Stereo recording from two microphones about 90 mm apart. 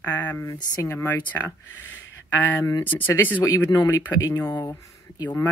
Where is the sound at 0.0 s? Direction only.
20° left (ahead or behind).